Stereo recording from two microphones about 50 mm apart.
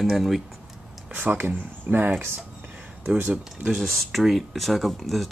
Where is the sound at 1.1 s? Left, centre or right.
Right.